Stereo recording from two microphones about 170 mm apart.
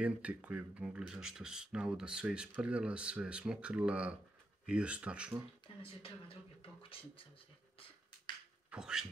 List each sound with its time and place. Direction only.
0.0 s speech: 5° right (ahead or behind)
5.8 s speech: 30° left (ahead or behind)
8.6 s a sound: 5° right (ahead or behind)